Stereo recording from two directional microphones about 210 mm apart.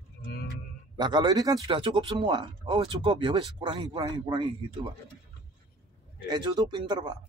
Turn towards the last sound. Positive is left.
turn(degrees=-20)  # may be behind; listen again after turning